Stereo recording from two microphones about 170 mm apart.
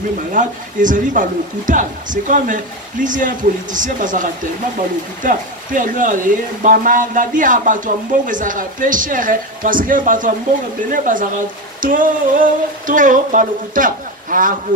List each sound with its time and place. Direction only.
0.3 s speech: 50° right (ahead or behind)